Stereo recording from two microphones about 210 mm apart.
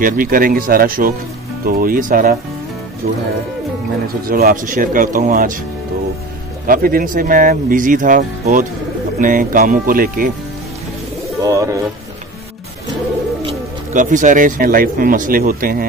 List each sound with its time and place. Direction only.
0.0 s speech: 40° right (ahead or behind)
4.3 s speech: 40° right (ahead or behind)
6.7 s speech: 45° right (ahead or behind)
11.4 s speech: 15° right (ahead or behind)
13.9 s speech: 40° right (ahead or behind)